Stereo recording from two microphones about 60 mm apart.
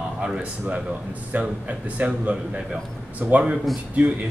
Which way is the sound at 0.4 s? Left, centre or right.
Right.